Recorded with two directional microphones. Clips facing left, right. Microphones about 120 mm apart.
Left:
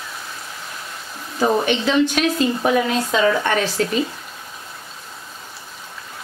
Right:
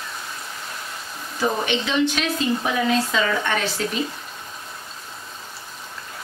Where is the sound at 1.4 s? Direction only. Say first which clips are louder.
Left 5 dB; 40° left (ahead or behind).